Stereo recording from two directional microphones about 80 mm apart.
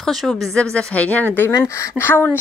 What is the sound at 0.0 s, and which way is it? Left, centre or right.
Speech, centre.